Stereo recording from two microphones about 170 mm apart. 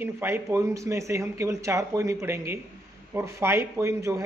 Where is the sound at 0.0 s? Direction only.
15° right (ahead or behind).